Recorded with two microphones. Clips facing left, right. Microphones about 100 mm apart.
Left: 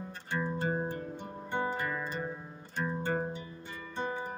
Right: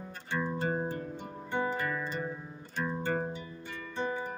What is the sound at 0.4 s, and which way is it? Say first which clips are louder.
Music: right 1 dB; 15° left (ahead or behind).